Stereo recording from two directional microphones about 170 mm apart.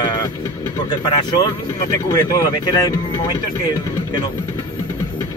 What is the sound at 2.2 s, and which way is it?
Speech, 20° left (ahead or behind).